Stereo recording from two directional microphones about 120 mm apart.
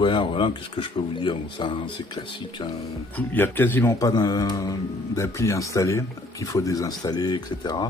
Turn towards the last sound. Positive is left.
turn(degrees=35)  # may be behind; listen again after turning